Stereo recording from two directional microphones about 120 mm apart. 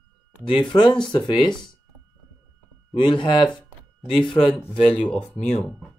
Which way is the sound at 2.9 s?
40° left (ahead or behind).